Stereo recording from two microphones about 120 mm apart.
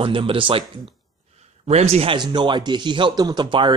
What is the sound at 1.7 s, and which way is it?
Speech, 60° right (ahead or behind).